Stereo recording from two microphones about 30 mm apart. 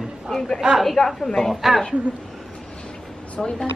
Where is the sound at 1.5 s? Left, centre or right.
Centre.